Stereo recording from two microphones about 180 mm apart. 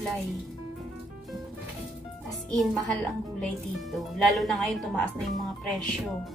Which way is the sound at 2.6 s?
Centre (ahead or behind).